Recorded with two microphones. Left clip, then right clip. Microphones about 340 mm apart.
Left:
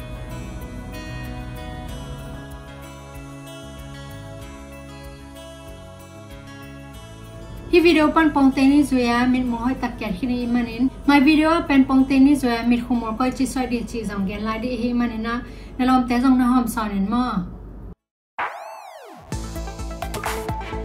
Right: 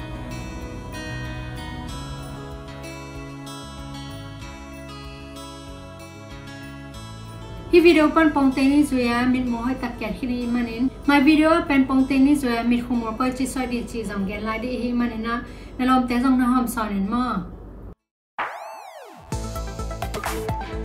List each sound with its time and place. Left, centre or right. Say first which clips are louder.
7.7 s a woman's voice: even; centre
18.4 s boing: left 1 dB; centre
20.0 s music: left 2 dB; centre